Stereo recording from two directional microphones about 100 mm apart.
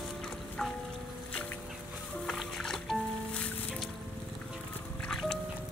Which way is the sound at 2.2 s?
Centre (ahead or behind).